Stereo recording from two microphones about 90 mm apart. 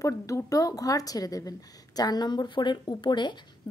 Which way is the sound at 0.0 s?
35° left (ahead or behind).